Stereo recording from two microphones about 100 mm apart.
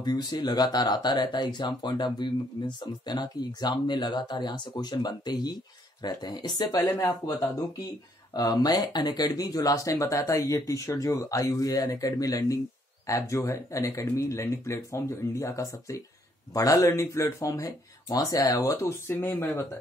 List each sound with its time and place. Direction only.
0.0 s speech: 45° left (ahead or behind)
6.7 s speech: 30° left (ahead or behind)